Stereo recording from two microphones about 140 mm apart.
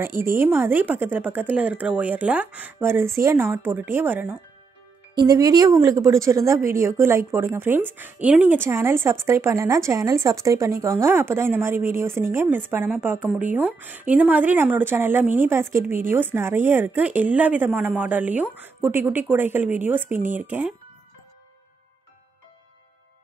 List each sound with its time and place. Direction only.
0.4 s speech: 15° right (ahead or behind)
5.1 s speech: 25° right (ahead or behind); by 20.7 s 10° right (ahead or behind)